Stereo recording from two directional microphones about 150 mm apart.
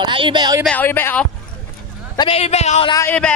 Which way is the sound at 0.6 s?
10° left (ahead or behind).